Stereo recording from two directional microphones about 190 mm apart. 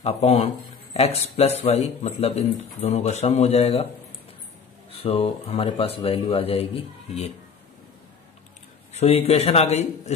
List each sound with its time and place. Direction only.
0.0 s speech: 30° left (ahead or behind)
4.9 s speech: 30° left (ahead or behind)
8.9 s speech: 35° left (ahead or behind)